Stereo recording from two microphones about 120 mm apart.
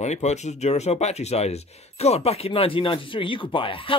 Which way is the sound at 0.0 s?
70° left (ahead or behind).